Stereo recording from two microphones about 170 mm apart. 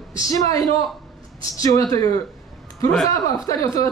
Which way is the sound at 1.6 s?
20° left (ahead or behind).